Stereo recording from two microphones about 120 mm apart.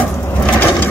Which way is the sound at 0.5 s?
15° left (ahead or behind).